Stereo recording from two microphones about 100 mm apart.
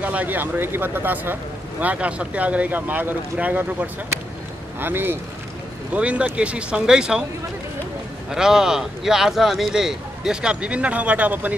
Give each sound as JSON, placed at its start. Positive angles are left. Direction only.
{"t": 0.0, "sound": "a man's voice", "side_deg": -15}
{"t": 5.9, "sound": "a man's voice", "side_deg": -10}
{"t": 8.3, "sound": "speech", "side_deg": -5}